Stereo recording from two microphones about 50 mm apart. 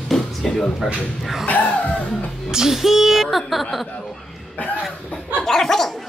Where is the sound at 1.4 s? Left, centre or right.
Left.